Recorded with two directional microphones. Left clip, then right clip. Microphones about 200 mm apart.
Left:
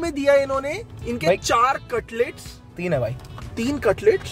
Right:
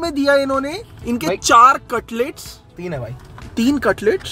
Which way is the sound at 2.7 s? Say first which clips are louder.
Left 5 dB; 20° left (ahead or behind).